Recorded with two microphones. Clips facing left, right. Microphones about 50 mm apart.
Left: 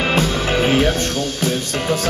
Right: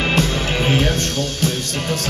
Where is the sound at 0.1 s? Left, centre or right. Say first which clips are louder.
Left 2 dB; centre.